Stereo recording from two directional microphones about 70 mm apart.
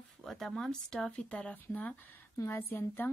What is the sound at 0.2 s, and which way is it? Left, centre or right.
Speech, centre.